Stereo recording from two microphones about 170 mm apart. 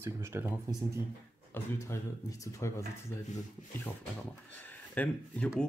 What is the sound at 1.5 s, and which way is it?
Speech, 15° left (ahead or behind).